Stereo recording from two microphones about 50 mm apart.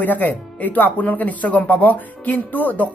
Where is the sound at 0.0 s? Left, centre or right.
Left.